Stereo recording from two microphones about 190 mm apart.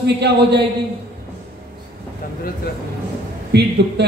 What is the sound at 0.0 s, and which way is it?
Speech, 60° right (ahead or behind).